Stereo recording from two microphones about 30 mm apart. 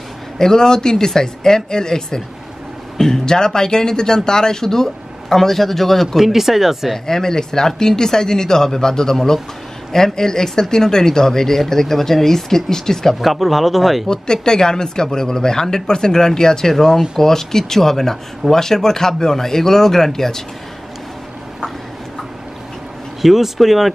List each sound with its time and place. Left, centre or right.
0.4 s speech: left
6.2 s speech: centre
6.9 s speech: centre
13.1 s speech: centre
14.0 s speech: left
23.2 s speech: centre